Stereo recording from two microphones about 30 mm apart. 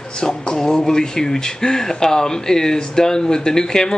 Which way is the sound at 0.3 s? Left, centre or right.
Left.